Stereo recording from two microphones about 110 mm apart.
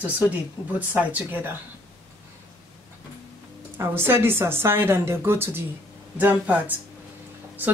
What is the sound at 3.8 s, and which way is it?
A woman's voice, 20° right (ahead or behind).